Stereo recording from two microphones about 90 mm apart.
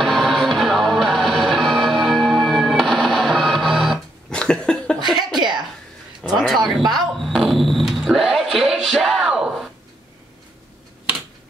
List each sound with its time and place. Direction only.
0.0 s music: centre (ahead or behind)
4.4 s cough: 10° left (ahead or behind)
4.9 s cough: 55° right (ahead or behind)
6.2 s speech: centre (ahead or behind)
7.2 s a sound: centre (ahead or behind)